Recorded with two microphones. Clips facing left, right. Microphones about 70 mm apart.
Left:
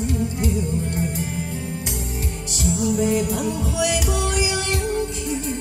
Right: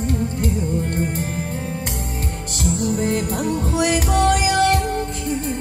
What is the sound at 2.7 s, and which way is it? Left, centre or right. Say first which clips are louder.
Music: left 1 dB; right.